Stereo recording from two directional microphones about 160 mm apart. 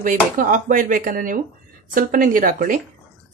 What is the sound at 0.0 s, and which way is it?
Speech, 55° right (ahead or behind).